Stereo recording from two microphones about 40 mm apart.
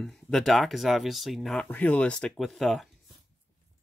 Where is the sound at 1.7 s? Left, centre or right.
Left.